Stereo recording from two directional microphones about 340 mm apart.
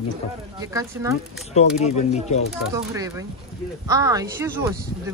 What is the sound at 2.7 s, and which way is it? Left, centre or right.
Speech, centre.